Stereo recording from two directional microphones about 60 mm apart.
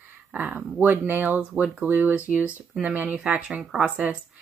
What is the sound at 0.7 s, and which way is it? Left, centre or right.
Speech, right.